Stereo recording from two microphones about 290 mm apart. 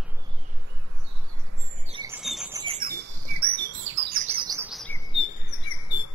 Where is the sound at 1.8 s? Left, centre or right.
Centre.